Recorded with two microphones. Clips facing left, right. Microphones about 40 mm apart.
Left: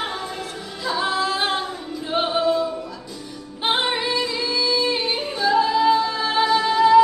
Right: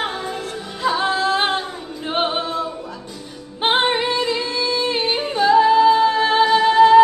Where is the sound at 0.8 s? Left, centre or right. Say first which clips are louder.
Right 3 dB; right.